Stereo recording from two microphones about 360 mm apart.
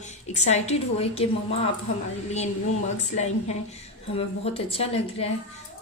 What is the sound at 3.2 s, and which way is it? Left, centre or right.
A woman's voice, centre.